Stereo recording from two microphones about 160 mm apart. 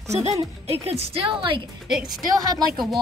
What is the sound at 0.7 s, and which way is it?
Speech, 40° right (ahead or behind).